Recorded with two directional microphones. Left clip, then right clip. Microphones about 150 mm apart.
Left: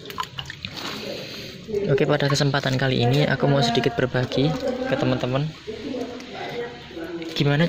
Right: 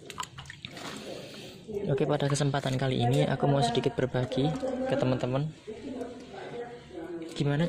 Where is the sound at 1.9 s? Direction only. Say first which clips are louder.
Left 7 dB; 10° right (ahead or behind).